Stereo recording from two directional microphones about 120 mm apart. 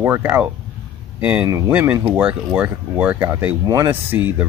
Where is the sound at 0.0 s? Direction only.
20° right (ahead or behind).